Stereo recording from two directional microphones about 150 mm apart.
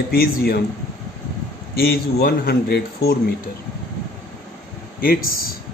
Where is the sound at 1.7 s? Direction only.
90° left.